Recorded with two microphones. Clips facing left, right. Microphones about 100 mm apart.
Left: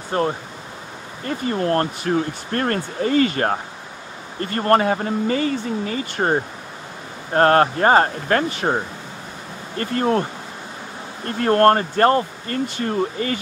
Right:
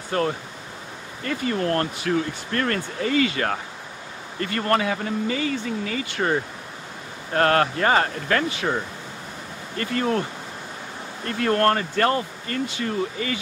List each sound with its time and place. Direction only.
0.1 s speech: 30° left (ahead or behind)
11.2 s speech: 40° left (ahead or behind)